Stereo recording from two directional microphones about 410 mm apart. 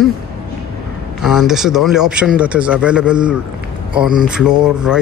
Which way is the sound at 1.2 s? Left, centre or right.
Centre.